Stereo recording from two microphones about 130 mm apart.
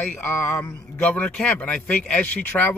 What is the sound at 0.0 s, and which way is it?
Speech, 15° left (ahead or behind).